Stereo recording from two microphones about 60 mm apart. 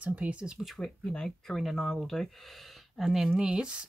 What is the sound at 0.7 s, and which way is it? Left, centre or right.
Speech, centre.